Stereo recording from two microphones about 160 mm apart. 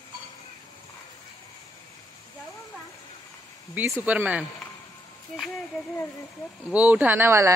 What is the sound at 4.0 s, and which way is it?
Speech, 10° right (ahead or behind).